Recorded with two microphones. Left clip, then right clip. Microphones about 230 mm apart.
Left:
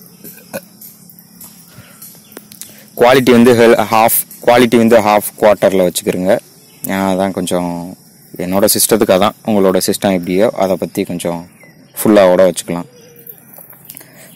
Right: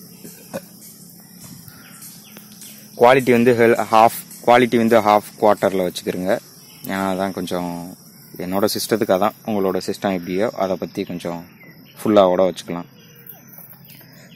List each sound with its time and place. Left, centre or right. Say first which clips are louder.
3.0 s speech: left 5 dB; left